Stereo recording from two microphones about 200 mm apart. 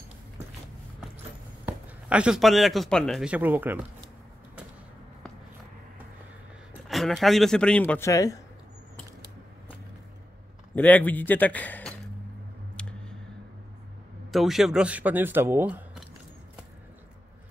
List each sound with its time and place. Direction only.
1.7 s speech: 5° right (ahead or behind)
6.9 s speech: centre (ahead or behind)
10.7 s a man's voice: 10° left (ahead or behind)
12.8 s a sound: 5° left (ahead or behind)
14.3 s a man's voice: centre (ahead or behind)